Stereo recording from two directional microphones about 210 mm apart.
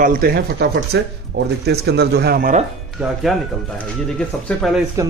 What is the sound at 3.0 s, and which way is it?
Speech, centre (ahead or behind).